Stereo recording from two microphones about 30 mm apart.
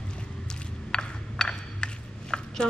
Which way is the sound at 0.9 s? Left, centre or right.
Left.